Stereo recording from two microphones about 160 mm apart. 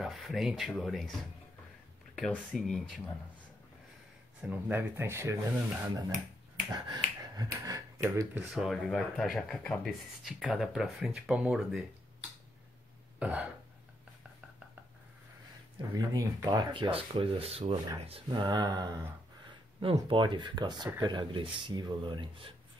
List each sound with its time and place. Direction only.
0.0 s speech: centre (ahead or behind)
2.1 s speech: centre (ahead or behind)
4.4 s speech: 10° right (ahead or behind)
6.7 s finger snapping: 25° right (ahead or behind)
7.5 s speech: 20° right (ahead or behind)
8.5 s speech: centre (ahead or behind)
13.2 s speech: 10° right (ahead or behind)
15.9 s speech: 25° right (ahead or behind)